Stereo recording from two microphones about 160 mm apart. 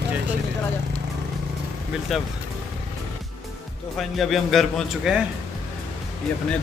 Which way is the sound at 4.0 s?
Centre (ahead or behind).